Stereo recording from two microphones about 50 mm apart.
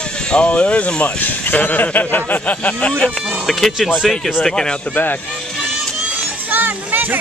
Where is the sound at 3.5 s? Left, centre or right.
Centre.